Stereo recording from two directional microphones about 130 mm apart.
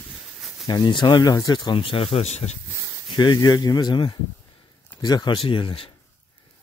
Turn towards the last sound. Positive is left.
turn(degrees=45)  # may be behind; listen again after turning